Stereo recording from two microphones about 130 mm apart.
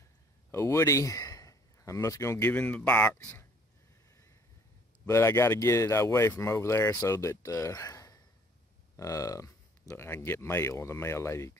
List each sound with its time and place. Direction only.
0.5 s speech: 20° left (ahead or behind)
5.0 s speech: 20° left (ahead or behind)